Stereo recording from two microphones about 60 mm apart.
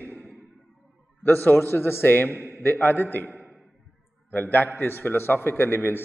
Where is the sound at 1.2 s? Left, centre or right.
Left.